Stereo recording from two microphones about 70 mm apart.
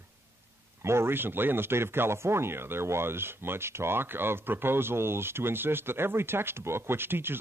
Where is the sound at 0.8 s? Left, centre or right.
Right.